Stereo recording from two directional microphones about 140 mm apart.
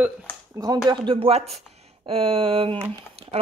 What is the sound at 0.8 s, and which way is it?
Speech, 35° right (ahead or behind).